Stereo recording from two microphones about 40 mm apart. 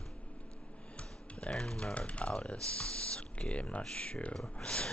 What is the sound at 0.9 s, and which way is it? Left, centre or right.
Typing, left.